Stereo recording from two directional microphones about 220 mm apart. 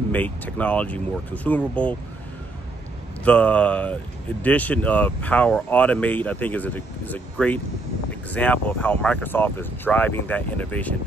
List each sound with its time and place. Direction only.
0.1 s speech: 5° left (ahead or behind)
3.3 s speech: 5° left (ahead or behind)